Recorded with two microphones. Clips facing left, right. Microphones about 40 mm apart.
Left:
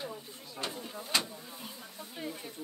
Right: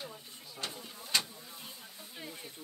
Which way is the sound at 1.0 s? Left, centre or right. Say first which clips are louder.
Left 1 dB; centre.